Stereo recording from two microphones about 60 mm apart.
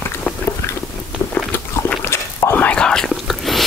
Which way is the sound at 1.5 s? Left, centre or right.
Left.